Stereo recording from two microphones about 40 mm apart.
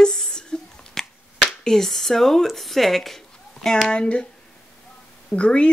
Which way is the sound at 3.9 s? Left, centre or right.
Left.